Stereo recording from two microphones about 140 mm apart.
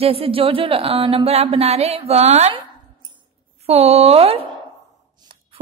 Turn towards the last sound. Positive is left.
turn(degrees=-30)  # may be behind; listen again after turning